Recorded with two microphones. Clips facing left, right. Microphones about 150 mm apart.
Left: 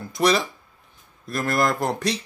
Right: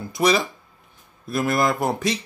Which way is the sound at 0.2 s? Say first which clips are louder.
Right 1 dB; centre (ahead or behind).